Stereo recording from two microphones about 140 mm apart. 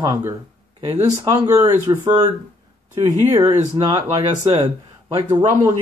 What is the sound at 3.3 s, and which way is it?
Speech, 25° right (ahead or behind).